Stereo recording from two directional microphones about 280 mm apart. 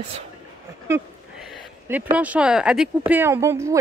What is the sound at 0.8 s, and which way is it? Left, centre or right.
Speech, centre.